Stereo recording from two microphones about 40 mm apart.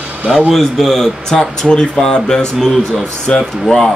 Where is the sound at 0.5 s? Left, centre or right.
Centre.